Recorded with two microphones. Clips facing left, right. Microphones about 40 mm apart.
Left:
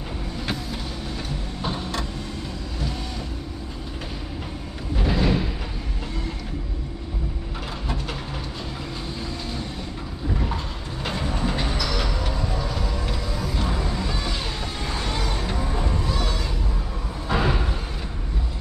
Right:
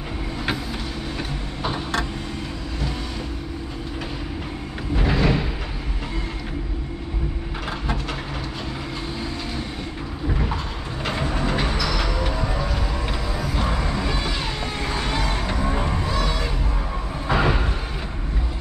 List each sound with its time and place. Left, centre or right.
4.9 s a sound: right
11.1 s train: right
12.4 s music: centre